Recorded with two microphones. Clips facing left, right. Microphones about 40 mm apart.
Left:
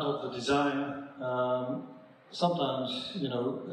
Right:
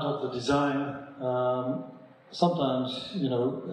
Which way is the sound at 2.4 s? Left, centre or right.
Left.